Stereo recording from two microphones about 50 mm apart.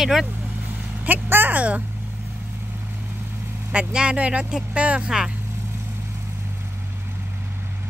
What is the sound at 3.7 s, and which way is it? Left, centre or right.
Speech, right.